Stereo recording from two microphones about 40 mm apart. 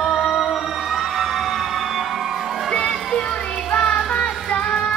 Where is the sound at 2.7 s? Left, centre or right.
Centre.